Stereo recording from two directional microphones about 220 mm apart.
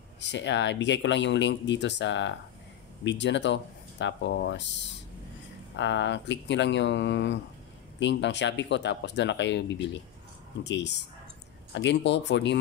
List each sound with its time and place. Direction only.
0.2 s speech: 55° left (ahead or behind)